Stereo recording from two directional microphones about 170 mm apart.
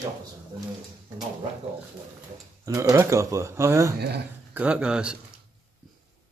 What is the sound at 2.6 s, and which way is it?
Speech, 20° right (ahead or behind).